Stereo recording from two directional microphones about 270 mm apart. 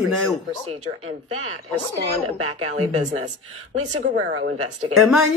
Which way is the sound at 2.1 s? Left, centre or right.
Right.